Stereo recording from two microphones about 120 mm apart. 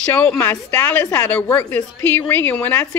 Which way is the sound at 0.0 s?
10° left (ahead or behind).